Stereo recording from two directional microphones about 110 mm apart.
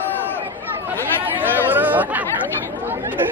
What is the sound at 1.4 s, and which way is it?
Chatter, 15° right (ahead or behind).